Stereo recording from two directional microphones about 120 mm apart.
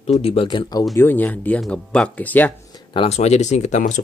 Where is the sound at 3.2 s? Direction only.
70° left (ahead or behind).